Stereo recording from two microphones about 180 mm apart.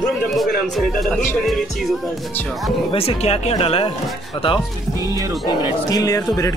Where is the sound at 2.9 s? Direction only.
30° left (ahead or behind).